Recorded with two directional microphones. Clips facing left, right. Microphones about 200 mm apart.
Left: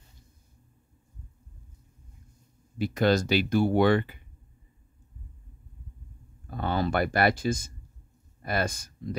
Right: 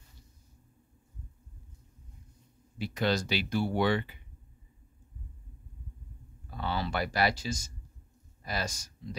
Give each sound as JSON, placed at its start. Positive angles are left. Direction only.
{"t": 2.8, "sound": "speech", "side_deg": 45}
{"t": 6.4, "sound": "speech", "side_deg": 50}